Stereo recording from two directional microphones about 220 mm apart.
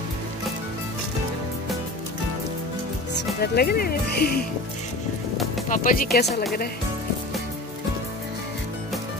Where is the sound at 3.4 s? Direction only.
45° left (ahead or behind).